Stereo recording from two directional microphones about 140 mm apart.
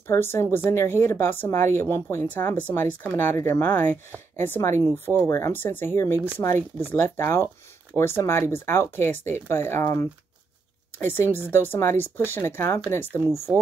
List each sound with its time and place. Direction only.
0.0 s speech: 15° left (ahead or behind)
11.0 s speech: 15° left (ahead or behind)
13.5 s speech: 5° right (ahead or behind)